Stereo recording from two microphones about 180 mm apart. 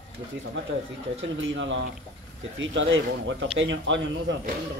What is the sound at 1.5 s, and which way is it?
Speech, 90° right.